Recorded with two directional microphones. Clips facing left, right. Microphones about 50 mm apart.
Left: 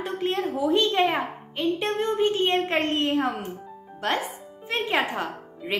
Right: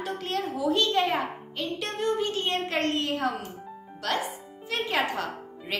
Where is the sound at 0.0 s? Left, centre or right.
Left.